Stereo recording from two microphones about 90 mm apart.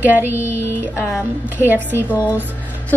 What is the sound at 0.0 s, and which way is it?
Speech, 20° right (ahead or behind).